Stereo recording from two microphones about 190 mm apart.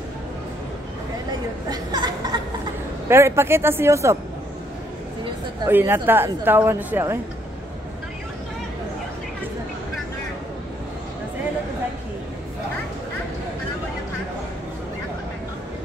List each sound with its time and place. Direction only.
1.7 s a sound: 20° right (ahead or behind)
3.1 s speech: 15° right (ahead or behind)
5.7 s speech: 10° right (ahead or behind)